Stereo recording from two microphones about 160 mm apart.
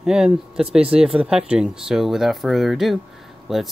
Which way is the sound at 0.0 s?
5° right (ahead or behind).